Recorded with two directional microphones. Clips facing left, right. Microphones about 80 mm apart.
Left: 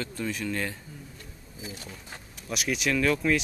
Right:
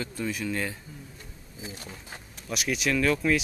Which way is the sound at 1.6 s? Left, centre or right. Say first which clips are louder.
Even; centre.